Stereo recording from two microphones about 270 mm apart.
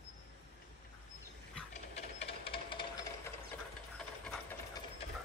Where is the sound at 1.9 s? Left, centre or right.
Left.